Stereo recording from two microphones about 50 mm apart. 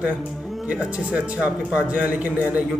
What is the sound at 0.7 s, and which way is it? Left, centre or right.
Speech, right.